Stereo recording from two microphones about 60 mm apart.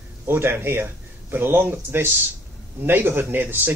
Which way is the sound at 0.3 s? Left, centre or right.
Right.